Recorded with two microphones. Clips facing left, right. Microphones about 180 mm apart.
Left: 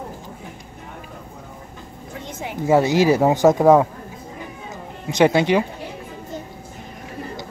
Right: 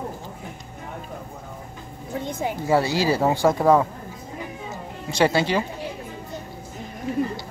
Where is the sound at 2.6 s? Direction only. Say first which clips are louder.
Left 6 dB; 20° left (ahead or behind).